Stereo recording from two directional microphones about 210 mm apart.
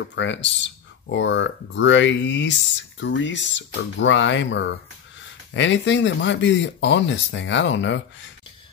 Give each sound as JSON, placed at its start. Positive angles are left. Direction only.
{"t": 0.1, "sound": "speech", "side_deg": 60}